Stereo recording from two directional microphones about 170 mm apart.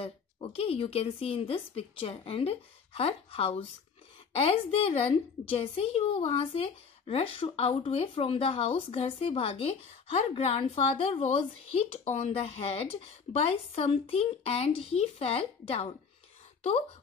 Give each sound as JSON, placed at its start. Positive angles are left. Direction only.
{"t": 0.0, "sound": "a woman's voice", "side_deg": 35}